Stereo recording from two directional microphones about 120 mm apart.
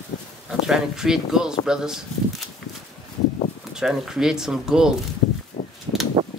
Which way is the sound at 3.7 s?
5° right (ahead or behind).